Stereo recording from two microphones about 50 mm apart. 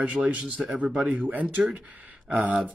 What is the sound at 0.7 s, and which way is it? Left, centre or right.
Speech, right.